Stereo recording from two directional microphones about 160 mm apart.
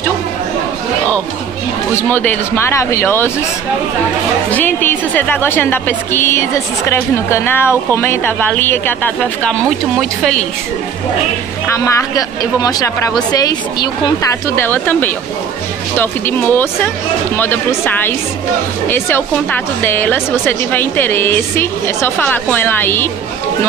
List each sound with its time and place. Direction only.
2.0 s a woman's voice: 10° left (ahead or behind)
4.5 s a woman's voice: 10° left (ahead or behind)
11.7 s speech: 20° left (ahead or behind)
14.5 s a woman's voice: 15° left (ahead or behind)